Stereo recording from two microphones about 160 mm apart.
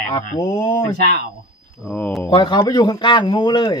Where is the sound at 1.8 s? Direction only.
5° left (ahead or behind).